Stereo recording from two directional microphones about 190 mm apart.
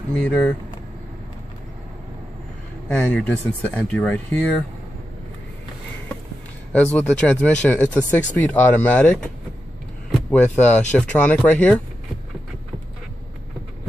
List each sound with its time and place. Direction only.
0.2 s speech: 5° left (ahead or behind)
2.9 s speech: 10° left (ahead or behind)
6.7 s speech: 5° left (ahead or behind)
10.3 s speech: 10° left (ahead or behind)